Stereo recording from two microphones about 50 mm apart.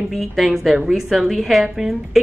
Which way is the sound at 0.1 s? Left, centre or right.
Centre.